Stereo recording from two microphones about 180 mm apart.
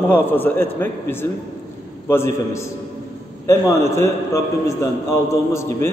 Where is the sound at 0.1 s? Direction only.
10° left (ahead or behind).